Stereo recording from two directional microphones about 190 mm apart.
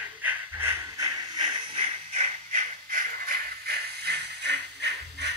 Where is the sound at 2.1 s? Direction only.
40° right (ahead or behind).